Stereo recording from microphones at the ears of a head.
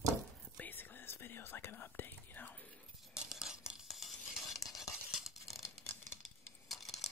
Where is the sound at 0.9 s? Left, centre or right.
Left.